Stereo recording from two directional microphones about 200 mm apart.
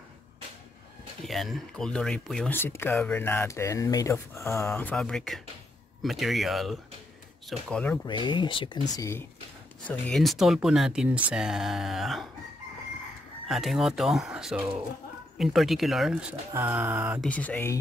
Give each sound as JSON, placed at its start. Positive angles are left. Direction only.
{"t": 1.2, "sound": "speech", "side_deg": 0}
{"t": 8.1, "sound": "speech", "side_deg": 25}
{"t": 9.8, "sound": "speech", "side_deg": 5}
{"t": 13.5, "sound": "speech", "side_deg": 0}
{"t": 17.3, "sound": "speech", "side_deg": 5}